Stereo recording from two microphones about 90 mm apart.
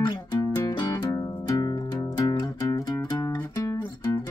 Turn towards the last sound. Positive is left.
turn(degrees=35)  # may be behind; listen again after turning